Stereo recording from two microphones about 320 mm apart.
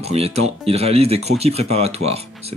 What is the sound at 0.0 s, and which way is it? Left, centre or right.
Speech, centre.